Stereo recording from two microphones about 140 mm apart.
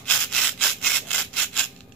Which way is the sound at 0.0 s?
5° left (ahead or behind).